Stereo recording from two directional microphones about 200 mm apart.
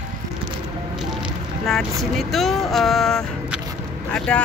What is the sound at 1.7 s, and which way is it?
Speech, centre (ahead or behind).